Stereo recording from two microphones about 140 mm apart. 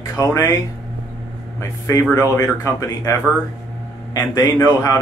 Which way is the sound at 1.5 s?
20° left (ahead or behind).